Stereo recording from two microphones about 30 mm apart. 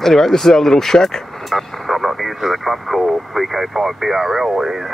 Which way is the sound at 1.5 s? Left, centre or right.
Centre.